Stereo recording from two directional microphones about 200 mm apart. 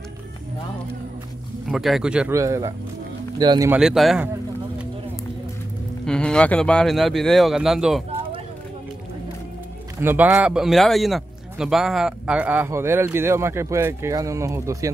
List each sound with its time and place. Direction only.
1.7 s speech: centre (ahead or behind); by 3.7 s 20° right (ahead or behind)
3.7 s speech: centre (ahead or behind)
6.0 s speech: 5° left (ahead or behind)
9.9 s a man's voice: 10° right (ahead or behind)